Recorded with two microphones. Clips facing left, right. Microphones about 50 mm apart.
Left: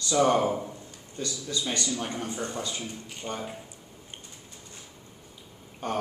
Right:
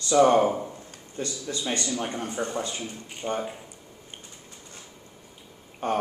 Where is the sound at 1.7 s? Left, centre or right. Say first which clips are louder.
Right 2 dB; right.